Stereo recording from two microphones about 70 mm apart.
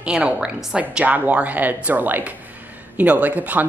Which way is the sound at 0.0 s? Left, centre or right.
Centre.